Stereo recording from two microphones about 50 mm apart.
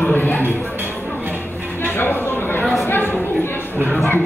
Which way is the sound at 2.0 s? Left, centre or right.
Left.